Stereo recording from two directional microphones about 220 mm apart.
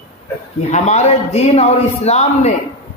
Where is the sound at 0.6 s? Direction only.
30° left (ahead or behind).